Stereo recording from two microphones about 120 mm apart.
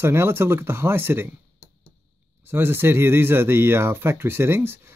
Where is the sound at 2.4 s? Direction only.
20° right (ahead or behind).